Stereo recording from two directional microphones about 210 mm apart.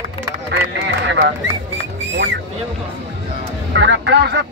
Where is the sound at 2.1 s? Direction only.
60° right (ahead or behind).